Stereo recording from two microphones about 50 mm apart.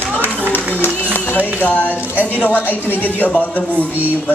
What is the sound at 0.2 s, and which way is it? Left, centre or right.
Run, left.